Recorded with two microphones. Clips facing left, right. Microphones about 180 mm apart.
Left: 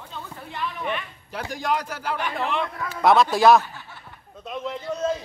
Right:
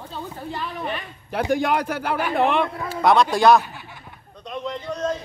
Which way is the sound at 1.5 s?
60° right (ahead or behind).